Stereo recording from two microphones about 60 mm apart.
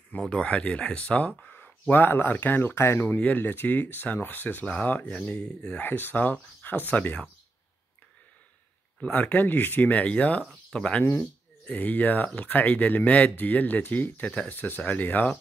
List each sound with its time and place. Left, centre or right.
0.2 s speech: centre; by 3.2 s left
3.2 s speech: left
5.8 s speech: left
9.0 s speech: left